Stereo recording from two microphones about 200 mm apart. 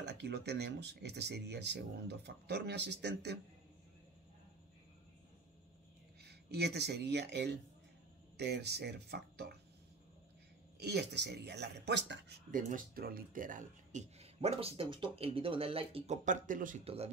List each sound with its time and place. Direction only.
0.0 s speech: 55° right (ahead or behind)
6.2 s speech: 55° right (ahead or behind)
10.8 s speech: 55° right (ahead or behind)
12.4 s speech: 40° right (ahead or behind)
16.8 s speech: 30° right (ahead or behind)